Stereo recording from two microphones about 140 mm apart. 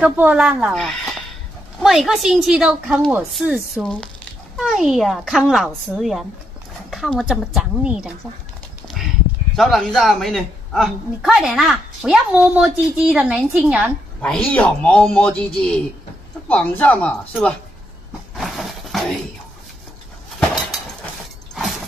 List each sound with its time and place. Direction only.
0.0 s a woman's voice: 10° right (ahead or behind)
9.6 s a woman's voice: centre (ahead or behind)
14.2 s speech: 5° left (ahead or behind)
18.3 s dog: centre (ahead or behind)